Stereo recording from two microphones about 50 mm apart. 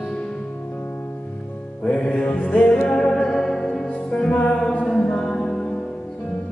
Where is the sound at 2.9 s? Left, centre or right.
Centre.